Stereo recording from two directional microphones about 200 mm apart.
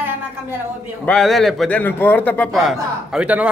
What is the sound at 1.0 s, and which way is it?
A man's voice, 5° left (ahead or behind).